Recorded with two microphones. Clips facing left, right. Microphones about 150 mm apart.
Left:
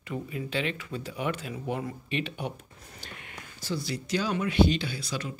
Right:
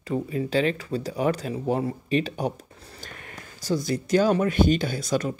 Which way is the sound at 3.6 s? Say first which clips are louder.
Right 7 dB; 45° right (ahead or behind).